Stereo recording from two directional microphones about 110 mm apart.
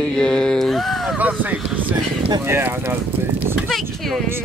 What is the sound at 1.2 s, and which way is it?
Speech, 15° right (ahead or behind).